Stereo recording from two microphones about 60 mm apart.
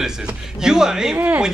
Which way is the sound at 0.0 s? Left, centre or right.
Centre.